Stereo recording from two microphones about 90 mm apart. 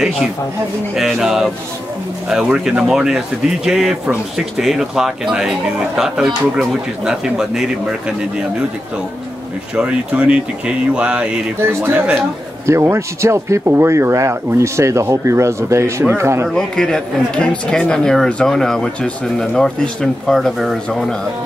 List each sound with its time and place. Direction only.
0.9 s speech: 5° right (ahead or behind)
9.8 s speech: 10° right (ahead or behind)
12.6 s speech: 30° right (ahead or behind)
16.4 s speech: 10° left (ahead or behind)